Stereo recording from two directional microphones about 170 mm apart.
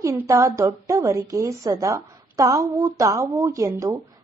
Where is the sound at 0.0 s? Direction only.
20° right (ahead or behind).